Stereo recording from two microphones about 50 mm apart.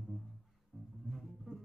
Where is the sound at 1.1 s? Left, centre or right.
Centre.